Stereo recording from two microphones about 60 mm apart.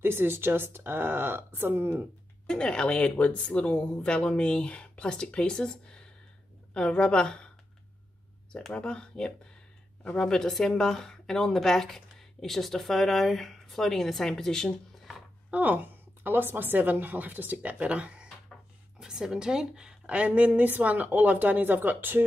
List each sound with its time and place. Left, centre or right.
0.0 s a woman's voice: right
2.4 s speech: centre
8.5 s speech: centre
15.5 s a woman's voice: right